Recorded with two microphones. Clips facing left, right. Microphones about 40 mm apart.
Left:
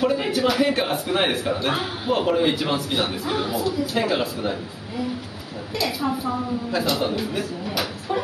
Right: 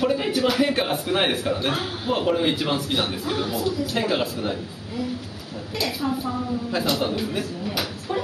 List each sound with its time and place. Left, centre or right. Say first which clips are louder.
0.0 s a man's voice: left 1 dB; centre
5.8 s a woman's voice: left 1 dB; centre